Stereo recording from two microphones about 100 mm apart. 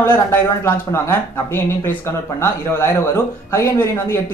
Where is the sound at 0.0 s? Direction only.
25° left (ahead or behind).